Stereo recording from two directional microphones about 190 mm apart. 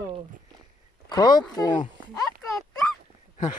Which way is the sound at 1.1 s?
20° left (ahead or behind).